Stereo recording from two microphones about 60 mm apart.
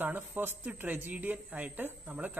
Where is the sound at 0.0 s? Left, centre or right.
Right.